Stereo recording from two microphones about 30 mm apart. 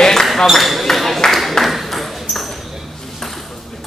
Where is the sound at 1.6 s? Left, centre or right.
Centre.